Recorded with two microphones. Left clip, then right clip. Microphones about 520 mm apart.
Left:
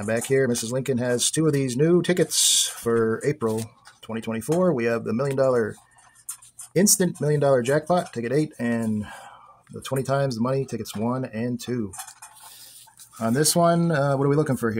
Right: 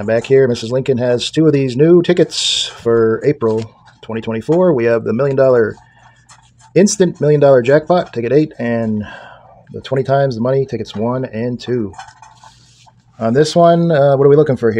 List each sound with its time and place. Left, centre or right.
0.0 s speech: left
13.2 s speech: left